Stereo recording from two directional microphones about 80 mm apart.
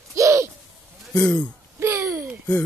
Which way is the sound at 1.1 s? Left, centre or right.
Centre.